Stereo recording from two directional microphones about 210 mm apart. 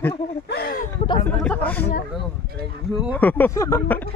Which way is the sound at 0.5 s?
45° left (ahead or behind).